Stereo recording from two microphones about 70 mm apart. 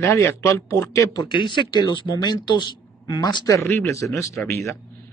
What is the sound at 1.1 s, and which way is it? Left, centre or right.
Speech, left.